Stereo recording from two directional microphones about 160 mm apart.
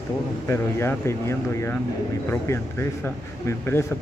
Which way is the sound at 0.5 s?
15° left (ahead or behind).